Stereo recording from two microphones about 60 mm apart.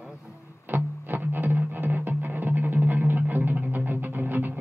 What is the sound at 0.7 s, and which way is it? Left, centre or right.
Music, right.